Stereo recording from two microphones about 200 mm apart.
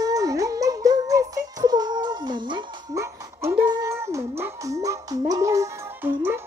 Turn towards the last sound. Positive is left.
turn(degrees=-10)  # may be behind; listen again after turning